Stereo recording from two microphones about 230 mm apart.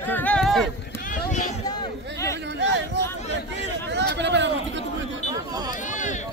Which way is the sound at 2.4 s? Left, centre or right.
Right.